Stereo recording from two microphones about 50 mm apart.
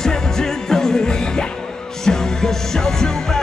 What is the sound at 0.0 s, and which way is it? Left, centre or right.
Music, centre.